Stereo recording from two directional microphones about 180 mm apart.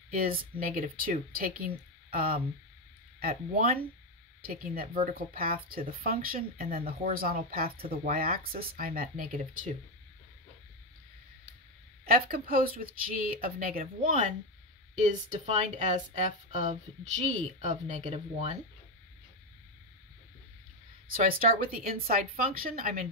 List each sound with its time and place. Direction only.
0.4 s speech: 50° right (ahead or behind)
12.1 s speech: 55° right (ahead or behind); by 18.6 s 35° right (ahead or behind)
21.1 s speech: 55° right (ahead or behind)